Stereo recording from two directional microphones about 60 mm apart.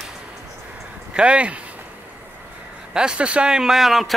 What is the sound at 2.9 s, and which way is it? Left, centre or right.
Speech, centre.